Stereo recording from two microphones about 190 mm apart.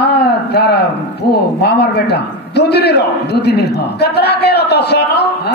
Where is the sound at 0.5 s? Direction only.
55° left (ahead or behind).